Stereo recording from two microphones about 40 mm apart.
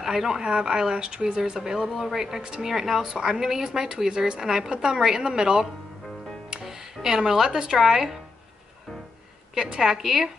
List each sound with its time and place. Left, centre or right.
0.0 s a woman's voice: centre
1.9 s speech: centre
2.1 s speech: centre
9.6 s speech: centre